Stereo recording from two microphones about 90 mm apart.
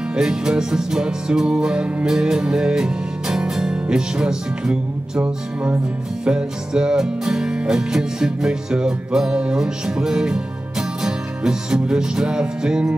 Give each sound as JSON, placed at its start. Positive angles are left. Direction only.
{"t": 0.1, "sound": "music", "side_deg": -5}
{"t": 5.2, "sound": "music", "side_deg": -15}